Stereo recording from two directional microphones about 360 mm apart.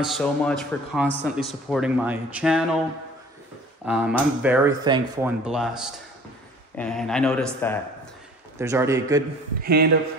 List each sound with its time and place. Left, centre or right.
0.0 s speech: centre
3.8 s speech: centre
8.5 s speech: centre
9.6 s a man's voice: right